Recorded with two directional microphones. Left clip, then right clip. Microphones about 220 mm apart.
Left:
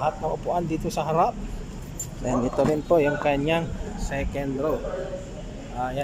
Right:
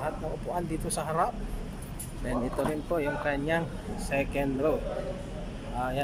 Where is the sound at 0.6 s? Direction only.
10° left (ahead or behind).